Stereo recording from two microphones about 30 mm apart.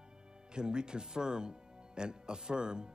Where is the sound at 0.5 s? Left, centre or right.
Right.